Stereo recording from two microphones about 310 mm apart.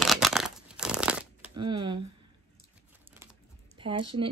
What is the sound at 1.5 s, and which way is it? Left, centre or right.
Speech, centre.